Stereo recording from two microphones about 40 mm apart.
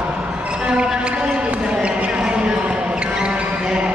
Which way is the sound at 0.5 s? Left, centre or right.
Right.